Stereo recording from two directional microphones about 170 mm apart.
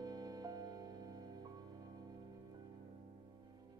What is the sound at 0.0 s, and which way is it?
Music, 25° right (ahead or behind).